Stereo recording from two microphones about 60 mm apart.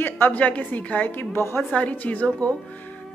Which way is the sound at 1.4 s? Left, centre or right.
Left.